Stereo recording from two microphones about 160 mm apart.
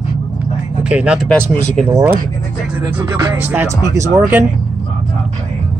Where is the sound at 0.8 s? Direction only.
5° right (ahead or behind).